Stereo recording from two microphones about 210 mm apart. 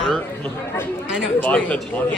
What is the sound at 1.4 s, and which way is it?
Speech, 5° left (ahead or behind).